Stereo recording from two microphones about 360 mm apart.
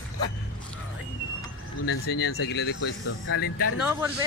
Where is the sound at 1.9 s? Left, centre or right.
Left.